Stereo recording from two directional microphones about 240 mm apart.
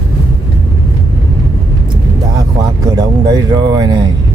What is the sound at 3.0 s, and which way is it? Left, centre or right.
Speech, centre.